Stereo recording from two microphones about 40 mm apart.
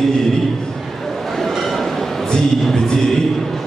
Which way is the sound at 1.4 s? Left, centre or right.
Centre.